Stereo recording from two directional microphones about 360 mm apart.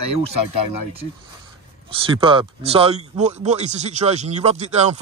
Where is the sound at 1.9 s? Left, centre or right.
Centre.